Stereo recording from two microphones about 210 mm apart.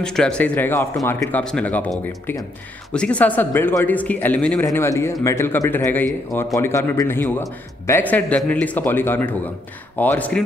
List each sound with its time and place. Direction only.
0.0 s a man's voice: 5° left (ahead or behind)